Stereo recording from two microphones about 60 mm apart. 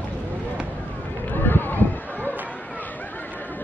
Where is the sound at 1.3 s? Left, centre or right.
Left.